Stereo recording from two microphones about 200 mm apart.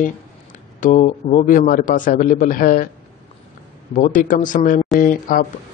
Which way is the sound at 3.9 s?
40° left (ahead or behind).